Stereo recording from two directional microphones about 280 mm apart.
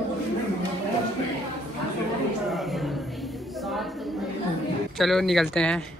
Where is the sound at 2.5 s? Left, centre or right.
Centre.